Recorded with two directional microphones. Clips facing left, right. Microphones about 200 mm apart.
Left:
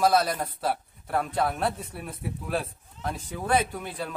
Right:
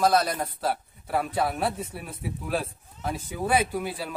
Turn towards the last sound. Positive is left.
turn(degrees=-5)  # may be behind; listen again after turning